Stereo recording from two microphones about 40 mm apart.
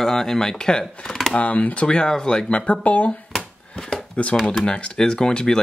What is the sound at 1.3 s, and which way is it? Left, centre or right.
Speech, left.